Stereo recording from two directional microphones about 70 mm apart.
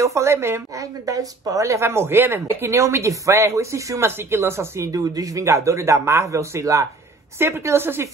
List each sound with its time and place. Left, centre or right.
0.0 s speech: right
0.7 s speech: right
4.9 s speech: right
7.3 s a woman's voice: right